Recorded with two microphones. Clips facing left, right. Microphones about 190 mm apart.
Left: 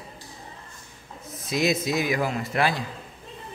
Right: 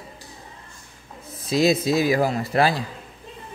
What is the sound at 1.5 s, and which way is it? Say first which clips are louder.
A man's voice: right 5 dB; 30° right (ahead or behind).